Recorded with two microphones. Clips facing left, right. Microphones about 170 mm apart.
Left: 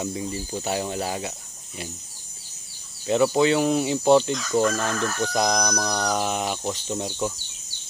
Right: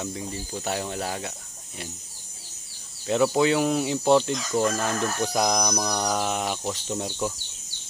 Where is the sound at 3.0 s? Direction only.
Centre (ahead or behind).